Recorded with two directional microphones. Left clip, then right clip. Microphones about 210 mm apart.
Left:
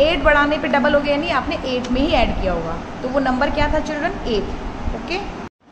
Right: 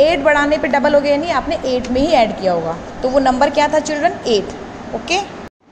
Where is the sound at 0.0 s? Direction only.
20° right (ahead or behind).